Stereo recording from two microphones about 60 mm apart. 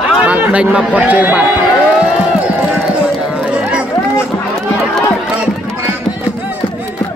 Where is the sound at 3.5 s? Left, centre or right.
Centre.